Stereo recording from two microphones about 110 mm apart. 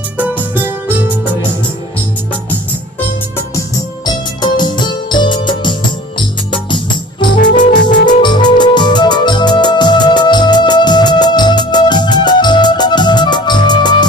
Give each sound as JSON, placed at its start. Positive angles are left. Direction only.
{"t": 0.2, "sound": "music", "side_deg": -15}
{"t": 4.0, "sound": "music", "side_deg": 40}